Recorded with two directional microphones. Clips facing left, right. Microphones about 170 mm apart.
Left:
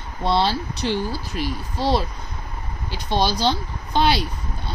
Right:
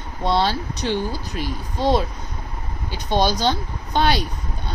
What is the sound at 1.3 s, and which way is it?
Speech, centre (ahead or behind).